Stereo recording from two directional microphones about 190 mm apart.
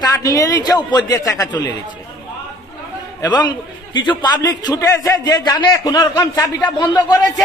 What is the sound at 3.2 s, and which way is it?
A man's voice, 20° left (ahead or behind).